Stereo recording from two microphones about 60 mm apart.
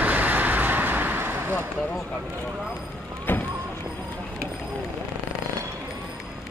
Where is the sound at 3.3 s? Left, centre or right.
Left.